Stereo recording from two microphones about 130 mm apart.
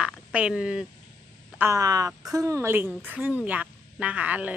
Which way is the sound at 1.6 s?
25° right (ahead or behind).